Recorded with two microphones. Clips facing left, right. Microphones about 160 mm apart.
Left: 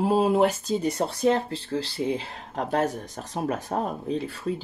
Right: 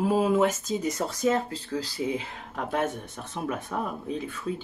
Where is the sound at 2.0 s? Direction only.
30° left (ahead or behind).